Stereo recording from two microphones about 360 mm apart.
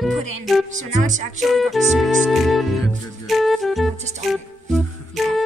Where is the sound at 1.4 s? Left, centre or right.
Centre.